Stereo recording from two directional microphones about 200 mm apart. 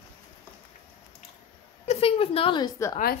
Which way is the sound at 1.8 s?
30° left (ahead or behind).